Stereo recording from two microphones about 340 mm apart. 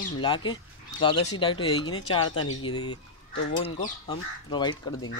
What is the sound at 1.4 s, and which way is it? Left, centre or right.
Speech, centre.